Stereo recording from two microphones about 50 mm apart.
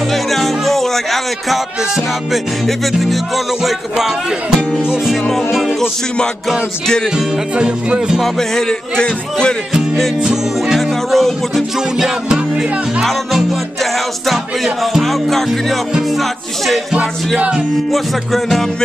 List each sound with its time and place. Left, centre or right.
0.1 s music: centre
5.0 s music: centre
7.5 s music: centre
8.2 s music: centre
11.1 s music: centre
14.3 s music: centre
17.9 s music: centre